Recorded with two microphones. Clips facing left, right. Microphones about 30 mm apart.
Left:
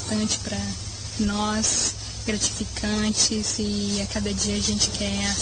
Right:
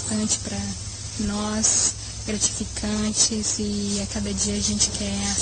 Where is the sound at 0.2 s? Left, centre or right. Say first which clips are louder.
Even; centre.